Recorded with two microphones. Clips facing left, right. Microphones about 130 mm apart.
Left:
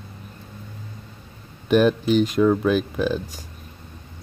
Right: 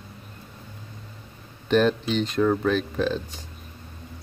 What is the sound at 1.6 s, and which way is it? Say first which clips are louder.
Speech: left 3 dB; 10° left (ahead or behind).